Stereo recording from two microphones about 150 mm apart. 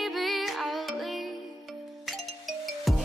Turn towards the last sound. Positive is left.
turn(degrees=0)  # may be behind; listen again after turning